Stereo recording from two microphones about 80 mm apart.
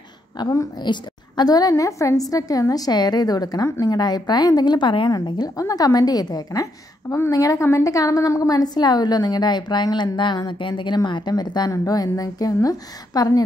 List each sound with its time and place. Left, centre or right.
0.4 s a woman's voice: left
5.6 s a woman's voice: left
11.7 s a woman's voice: left